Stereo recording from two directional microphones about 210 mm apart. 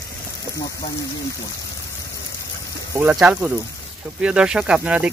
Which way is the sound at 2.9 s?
10° right (ahead or behind).